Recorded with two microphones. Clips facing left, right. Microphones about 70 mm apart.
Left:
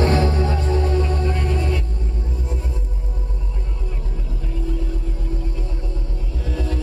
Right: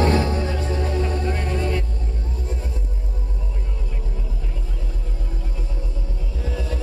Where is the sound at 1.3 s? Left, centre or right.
Right.